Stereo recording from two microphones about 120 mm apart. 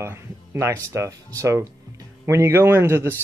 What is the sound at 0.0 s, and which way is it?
Speech, 20° right (ahead or behind).